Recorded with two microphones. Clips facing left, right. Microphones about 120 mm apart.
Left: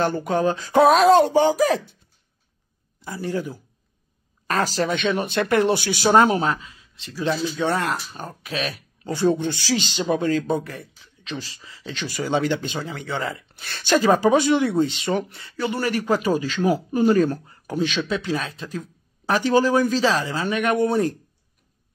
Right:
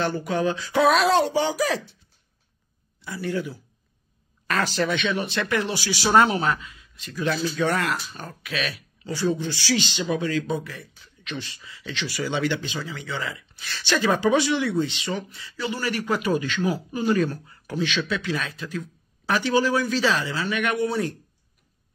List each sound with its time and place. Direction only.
0.0 s speech: 45° left (ahead or behind)
3.0 s speech: 40° left (ahead or behind)
6.1 s speech: 40° left (ahead or behind)
8.2 s speech: 35° left (ahead or behind)
9.0 s speech: 50° left (ahead or behind)
11.2 s speech: 35° left (ahead or behind)
15.0 s speech: 55° left (ahead or behind); by 16.7 s 35° left (ahead or behind)
16.7 s speech: 50° left (ahead or behind)